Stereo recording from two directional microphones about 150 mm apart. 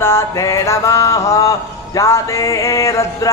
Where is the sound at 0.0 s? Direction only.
20° left (ahead or behind).